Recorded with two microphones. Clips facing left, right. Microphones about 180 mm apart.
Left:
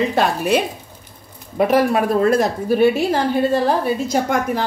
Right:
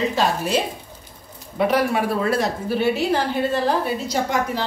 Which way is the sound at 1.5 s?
45° left (ahead or behind).